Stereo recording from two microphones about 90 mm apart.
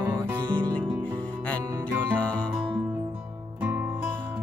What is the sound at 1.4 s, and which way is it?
Music, 15° left (ahead or behind).